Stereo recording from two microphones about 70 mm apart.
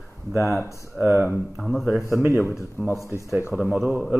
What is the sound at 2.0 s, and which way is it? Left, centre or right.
Speech, right.